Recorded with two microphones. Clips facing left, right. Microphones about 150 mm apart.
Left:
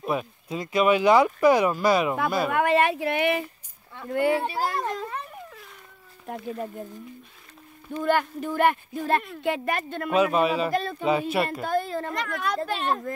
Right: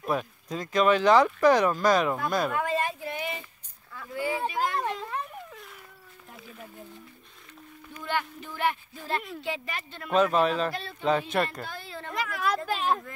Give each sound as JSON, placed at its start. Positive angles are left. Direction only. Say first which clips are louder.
{"t": 0.0, "sound": "speech", "louder": "left 1 dB", "side_deg": 5}
{"t": 2.5, "sound": "speech", "louder": "left 7 dB", "side_deg": 70}
{"t": 4.5, "sound": "a child's voice", "louder": "left 1 dB", "side_deg": 35}
{"t": 5.0, "sound": "a sound", "louder": "left 1 dB", "side_deg": 0}
{"t": 6.2, "sound": "speech", "louder": "left 14 dB", "side_deg": 65}
{"t": 8.0, "sound": "speech", "louder": "left 8 dB", "side_deg": 50}
{"t": 10.1, "sound": "speech", "louder": "left 1 dB", "side_deg": 10}
{"t": 10.7, "sound": "speech", "louder": "left 10 dB", "side_deg": 45}
{"t": 11.1, "sound": "speech", "louder": "left 1 dB", "side_deg": 10}
{"t": 11.6, "sound": "speech", "louder": "left 13 dB", "side_deg": 45}
{"t": 12.1, "sound": "a woman's voice", "louder": "left 1 dB", "side_deg": 0}